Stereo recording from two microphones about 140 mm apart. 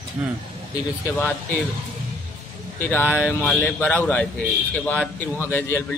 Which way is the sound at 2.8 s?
15° left (ahead or behind).